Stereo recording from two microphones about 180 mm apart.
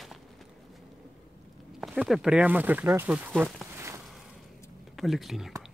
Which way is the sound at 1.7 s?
Centre (ahead or behind).